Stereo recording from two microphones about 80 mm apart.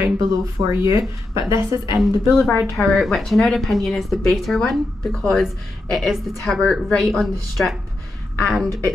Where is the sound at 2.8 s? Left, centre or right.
Centre.